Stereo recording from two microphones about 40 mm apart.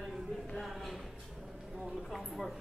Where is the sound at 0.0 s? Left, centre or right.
Centre.